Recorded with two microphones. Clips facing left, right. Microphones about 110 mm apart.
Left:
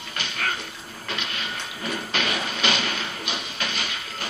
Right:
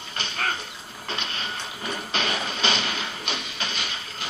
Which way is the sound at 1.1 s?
30° right (ahead or behind).